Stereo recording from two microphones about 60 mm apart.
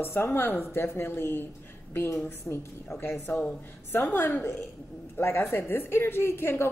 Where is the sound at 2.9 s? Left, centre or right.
Left.